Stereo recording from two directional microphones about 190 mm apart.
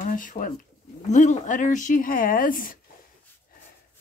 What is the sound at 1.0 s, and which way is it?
Speech, 40° left (ahead or behind).